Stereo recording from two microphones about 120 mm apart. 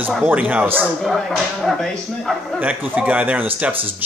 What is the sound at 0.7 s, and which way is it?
Speech, 5° left (ahead or behind).